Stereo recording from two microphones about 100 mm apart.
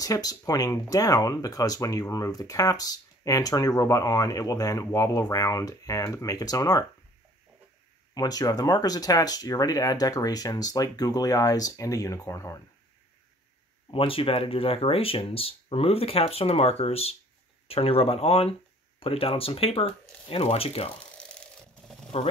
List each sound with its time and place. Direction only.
0.0 s speech: 40° left (ahead or behind)
8.1 s speech: 40° left (ahead or behind)
13.8 s speech: 65° left (ahead or behind); by 20.9 s 80° left
21.2 s a sound: 10° left (ahead or behind)